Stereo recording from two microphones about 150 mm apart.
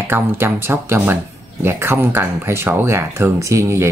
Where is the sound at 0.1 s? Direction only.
15° right (ahead or behind).